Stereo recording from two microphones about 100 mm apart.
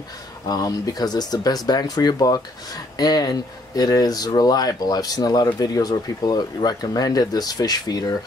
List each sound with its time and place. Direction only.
0.5 s speech: 40° left (ahead or behind)